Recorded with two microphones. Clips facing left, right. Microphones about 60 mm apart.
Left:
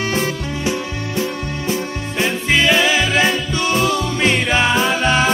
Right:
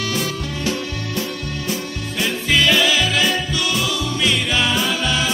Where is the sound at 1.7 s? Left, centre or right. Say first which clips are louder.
Left 5 dB; left.